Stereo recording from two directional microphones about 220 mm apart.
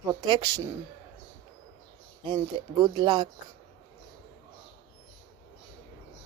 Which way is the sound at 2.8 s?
20° right (ahead or behind).